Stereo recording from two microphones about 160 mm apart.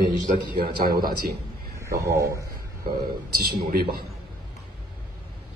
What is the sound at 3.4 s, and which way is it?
Speech, 80° right.